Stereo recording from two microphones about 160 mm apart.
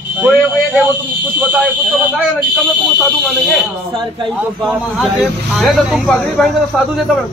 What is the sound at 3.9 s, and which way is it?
Speech, 35° right (ahead or behind).